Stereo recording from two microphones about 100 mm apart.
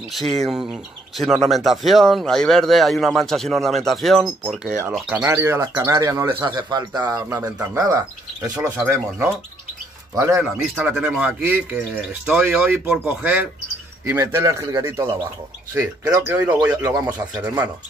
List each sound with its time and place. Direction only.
0.1 s speech: centre (ahead or behind)
4.6 s speech: 10° right (ahead or behind)
5.2 s speech: 25° right (ahead or behind)
6.4 s speech: 45° right (ahead or behind)
8.7 s speech: 25° right (ahead or behind)
10.3 s speech: 15° right (ahead or behind)
16.3 s speech: 15° right (ahead or behind)